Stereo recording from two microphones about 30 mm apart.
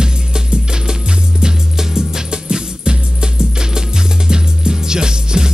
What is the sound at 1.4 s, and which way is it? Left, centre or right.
Music, right.